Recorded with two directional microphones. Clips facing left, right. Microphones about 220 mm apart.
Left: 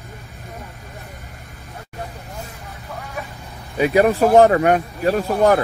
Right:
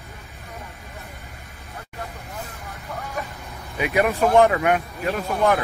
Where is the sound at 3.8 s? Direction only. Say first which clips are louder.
Left 6 dB; 30° left (ahead or behind).